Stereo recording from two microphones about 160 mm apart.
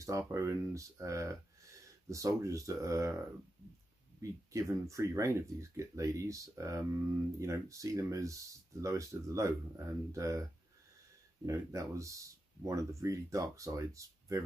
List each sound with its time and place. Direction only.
0.3 s speech: 20° right (ahead or behind)
4.2 s speech: 20° right (ahead or behind)
11.4 s speech: 20° right (ahead or behind)